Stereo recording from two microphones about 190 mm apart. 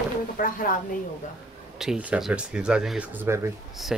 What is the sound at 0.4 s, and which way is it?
Speech, 50° left (ahead or behind).